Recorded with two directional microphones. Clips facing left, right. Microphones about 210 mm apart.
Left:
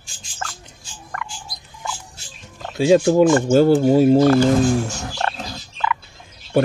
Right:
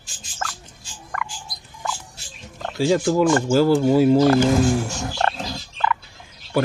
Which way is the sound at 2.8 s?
20° left (ahead or behind).